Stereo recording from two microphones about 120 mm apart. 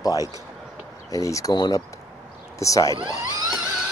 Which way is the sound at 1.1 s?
25° left (ahead or behind).